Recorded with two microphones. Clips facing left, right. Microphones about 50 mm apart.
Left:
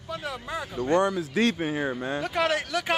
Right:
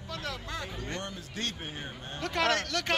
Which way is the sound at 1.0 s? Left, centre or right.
Left.